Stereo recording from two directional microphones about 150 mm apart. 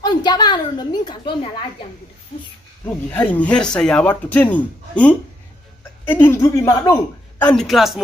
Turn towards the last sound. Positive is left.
turn(degrees=0)  # may be behind; listen again after turning